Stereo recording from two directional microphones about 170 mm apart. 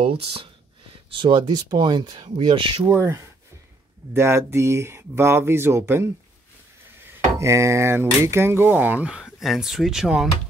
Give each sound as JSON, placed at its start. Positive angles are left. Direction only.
{"t": 0.0, "sound": "speech", "side_deg": -35}
{"t": 2.9, "sound": "speech", "side_deg": -15}
{"t": 7.3, "sound": "speech", "side_deg": -15}